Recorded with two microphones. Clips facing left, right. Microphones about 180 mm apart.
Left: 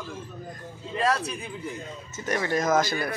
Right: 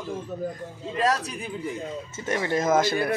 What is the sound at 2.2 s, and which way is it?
Speech, 25° right (ahead or behind).